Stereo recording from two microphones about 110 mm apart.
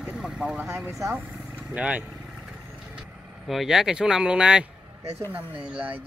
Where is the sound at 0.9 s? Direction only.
25° right (ahead or behind).